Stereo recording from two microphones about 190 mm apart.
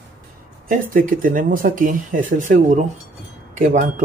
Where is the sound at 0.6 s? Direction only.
45° right (ahead or behind).